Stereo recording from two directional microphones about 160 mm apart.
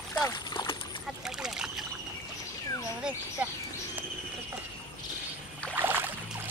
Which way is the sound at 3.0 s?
10° right (ahead or behind).